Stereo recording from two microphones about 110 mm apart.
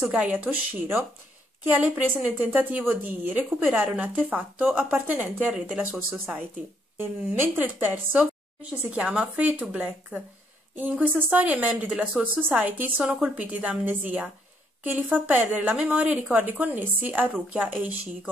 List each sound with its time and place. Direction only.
0.0 s a woman's voice: 10° right (ahead or behind)